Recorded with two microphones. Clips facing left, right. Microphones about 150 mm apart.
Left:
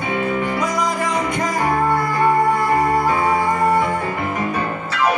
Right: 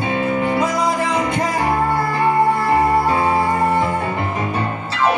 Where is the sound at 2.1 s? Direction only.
25° right (ahead or behind).